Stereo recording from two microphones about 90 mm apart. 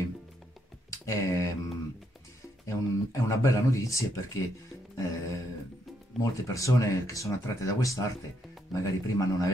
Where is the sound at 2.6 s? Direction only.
35° left (ahead or behind).